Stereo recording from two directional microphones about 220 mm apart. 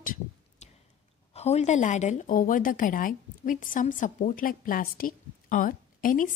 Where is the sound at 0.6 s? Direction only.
30° left (ahead or behind).